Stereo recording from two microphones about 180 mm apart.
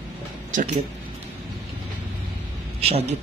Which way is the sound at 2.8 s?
35° right (ahead or behind).